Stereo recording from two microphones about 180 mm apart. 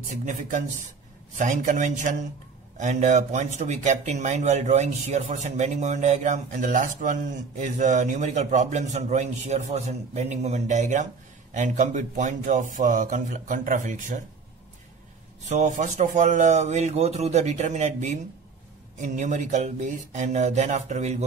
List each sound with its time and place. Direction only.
0.1 s speech: 45° right (ahead or behind)
15.4 s speech: 40° right (ahead or behind)